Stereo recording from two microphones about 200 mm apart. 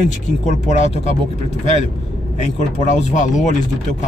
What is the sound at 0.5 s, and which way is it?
Speech, 35° left (ahead or behind).